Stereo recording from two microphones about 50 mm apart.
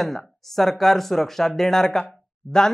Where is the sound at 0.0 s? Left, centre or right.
Centre.